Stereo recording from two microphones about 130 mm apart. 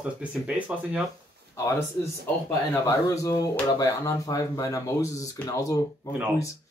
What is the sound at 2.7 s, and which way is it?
Speech, 25° left (ahead or behind).